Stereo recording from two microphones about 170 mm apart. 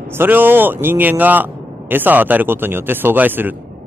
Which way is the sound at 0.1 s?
10° right (ahead or behind).